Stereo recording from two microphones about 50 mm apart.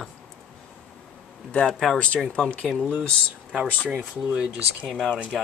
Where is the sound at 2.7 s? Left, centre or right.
Centre.